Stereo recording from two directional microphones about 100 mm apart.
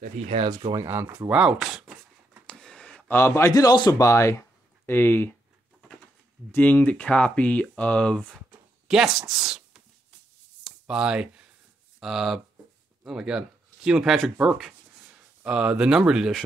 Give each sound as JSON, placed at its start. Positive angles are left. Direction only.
{"t": 0.7, "sound": "speech", "side_deg": -25}
{"t": 1.3, "sound": "speech", "side_deg": -10}
{"t": 2.4, "sound": "a sound", "side_deg": 5}
{"t": 3.1, "sound": "a man's voice", "side_deg": 25}
{"t": 4.0, "sound": "speech", "side_deg": 30}
{"t": 6.5, "sound": "speech", "side_deg": 15}
{"t": 8.8, "sound": "a woman's voice", "side_deg": -5}
{"t": 10.6, "sound": "a sound", "side_deg": -5}
{"t": 12.0, "sound": "speech", "side_deg": 0}